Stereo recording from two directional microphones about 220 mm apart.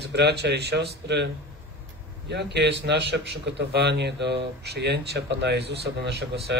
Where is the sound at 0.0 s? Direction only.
50° right (ahead or behind).